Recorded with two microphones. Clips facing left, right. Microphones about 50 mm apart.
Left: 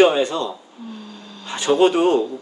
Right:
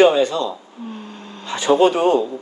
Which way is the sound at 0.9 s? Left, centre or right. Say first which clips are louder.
Right 2 dB; right.